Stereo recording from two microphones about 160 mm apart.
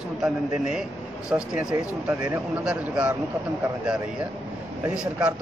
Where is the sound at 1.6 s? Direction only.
20° right (ahead or behind).